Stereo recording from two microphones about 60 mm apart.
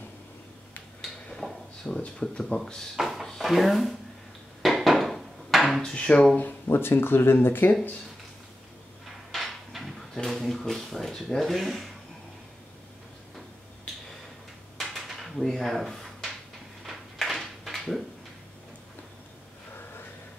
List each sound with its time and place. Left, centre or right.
1.3 s a sound: centre
2.0 s speech: centre
2.5 s speech: centre
3.0 s drawer open or close: centre
3.3 s speech: centre
4.6 s a sound: centre
5.9 s speech: centre
6.3 s speech: left
9.3 s speech: centre
14.8 s dishes: centre
16.8 s a sound: centre